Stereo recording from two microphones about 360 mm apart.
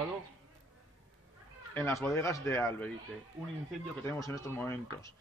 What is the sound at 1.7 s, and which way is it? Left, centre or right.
Speech, centre.